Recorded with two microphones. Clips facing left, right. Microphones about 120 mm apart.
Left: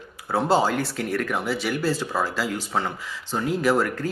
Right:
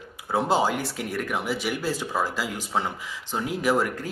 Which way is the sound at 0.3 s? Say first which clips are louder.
Left 2 dB; 15° right (ahead or behind).